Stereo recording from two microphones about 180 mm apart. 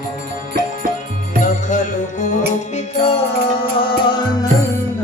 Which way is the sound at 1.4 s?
45° left (ahead or behind).